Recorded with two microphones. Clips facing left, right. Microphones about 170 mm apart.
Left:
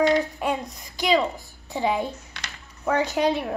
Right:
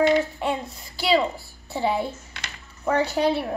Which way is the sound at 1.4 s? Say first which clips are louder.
Even; 15° left (ahead or behind).